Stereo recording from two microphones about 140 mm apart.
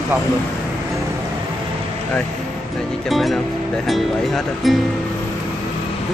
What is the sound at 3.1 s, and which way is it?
Speech, centre (ahead or behind).